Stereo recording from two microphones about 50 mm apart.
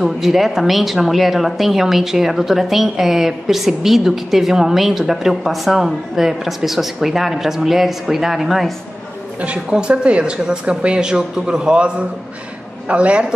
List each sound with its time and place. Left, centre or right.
0.0 s a woman's voice: centre
9.4 s speech: right